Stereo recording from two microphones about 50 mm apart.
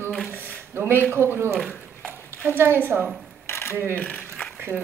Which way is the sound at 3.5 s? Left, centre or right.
Left.